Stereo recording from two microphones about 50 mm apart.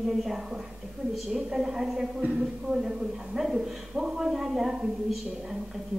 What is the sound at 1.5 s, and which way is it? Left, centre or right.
A woman's voice, centre.